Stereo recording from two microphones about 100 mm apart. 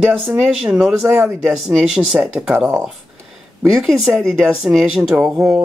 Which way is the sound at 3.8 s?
Centre (ahead or behind).